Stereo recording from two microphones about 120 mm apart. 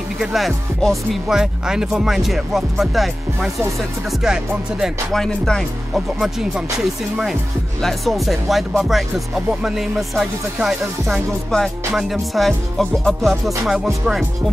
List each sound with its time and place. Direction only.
0.2 s music: centre (ahead or behind)
4.2 s music: 5° right (ahead or behind)